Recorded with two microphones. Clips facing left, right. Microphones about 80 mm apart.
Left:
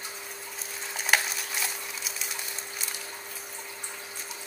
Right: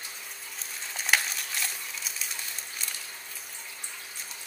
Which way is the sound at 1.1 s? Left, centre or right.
Centre.